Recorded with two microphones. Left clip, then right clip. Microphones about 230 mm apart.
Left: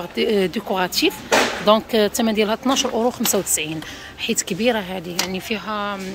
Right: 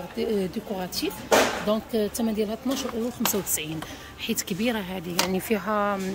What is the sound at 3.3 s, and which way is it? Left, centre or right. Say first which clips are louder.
Speech: left 7 dB; centre.